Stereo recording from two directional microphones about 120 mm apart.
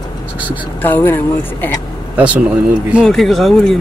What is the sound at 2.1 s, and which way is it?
Speech, 10° right (ahead or behind).